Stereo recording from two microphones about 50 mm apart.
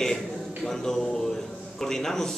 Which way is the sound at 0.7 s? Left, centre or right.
Centre.